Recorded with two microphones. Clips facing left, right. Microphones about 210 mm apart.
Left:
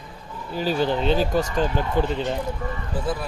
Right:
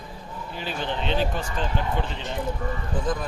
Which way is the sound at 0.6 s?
40° left (ahead or behind).